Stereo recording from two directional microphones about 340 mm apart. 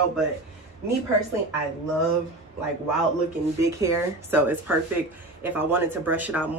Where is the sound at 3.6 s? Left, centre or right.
Centre.